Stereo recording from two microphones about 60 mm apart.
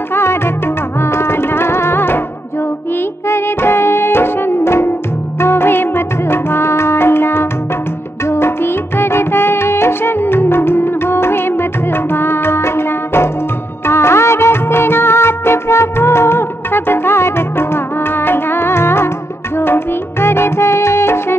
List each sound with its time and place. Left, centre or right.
0.1 s music: left